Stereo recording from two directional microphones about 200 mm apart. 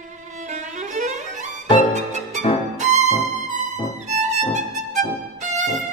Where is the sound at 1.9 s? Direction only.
35° right (ahead or behind).